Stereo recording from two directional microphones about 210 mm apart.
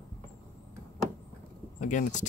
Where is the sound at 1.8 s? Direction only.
35° left (ahead or behind).